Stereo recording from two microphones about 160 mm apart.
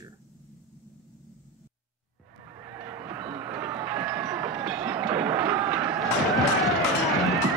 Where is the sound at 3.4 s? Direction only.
15° right (ahead or behind).